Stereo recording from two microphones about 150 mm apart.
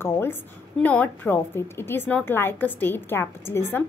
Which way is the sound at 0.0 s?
15° left (ahead or behind).